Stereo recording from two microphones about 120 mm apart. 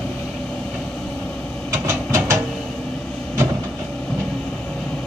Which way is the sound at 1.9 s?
20° right (ahead or behind).